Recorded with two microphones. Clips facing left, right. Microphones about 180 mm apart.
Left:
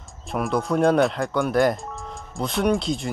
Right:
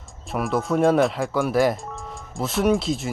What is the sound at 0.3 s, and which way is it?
Speech, centre (ahead or behind).